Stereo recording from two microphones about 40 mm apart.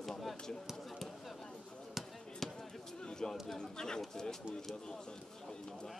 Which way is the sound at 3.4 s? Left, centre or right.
Centre.